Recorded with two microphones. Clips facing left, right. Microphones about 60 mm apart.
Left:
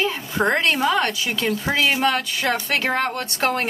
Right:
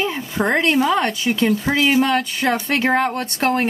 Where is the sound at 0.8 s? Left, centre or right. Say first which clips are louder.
Right 2 dB; right.